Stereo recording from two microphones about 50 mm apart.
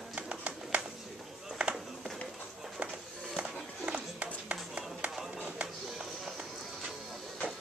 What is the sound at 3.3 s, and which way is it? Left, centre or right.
Music, centre.